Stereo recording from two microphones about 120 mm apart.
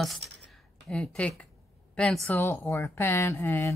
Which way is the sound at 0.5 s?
5° left (ahead or behind).